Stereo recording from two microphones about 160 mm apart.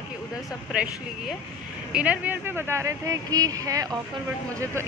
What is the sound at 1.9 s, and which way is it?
Speech, 10° right (ahead or behind).